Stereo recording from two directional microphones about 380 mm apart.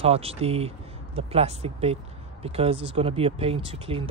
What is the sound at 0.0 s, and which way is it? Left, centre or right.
Speech, centre.